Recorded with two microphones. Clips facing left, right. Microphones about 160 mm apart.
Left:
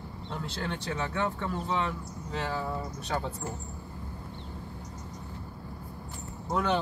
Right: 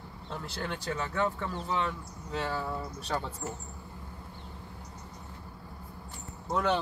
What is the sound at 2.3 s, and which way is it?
Speech, centre (ahead or behind).